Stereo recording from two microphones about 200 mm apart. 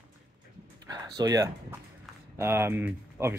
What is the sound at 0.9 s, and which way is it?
Speech, 20° right (ahead or behind).